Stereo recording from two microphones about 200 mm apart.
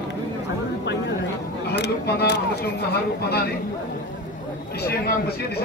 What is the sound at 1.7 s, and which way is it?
Speech, 60° left (ahead or behind).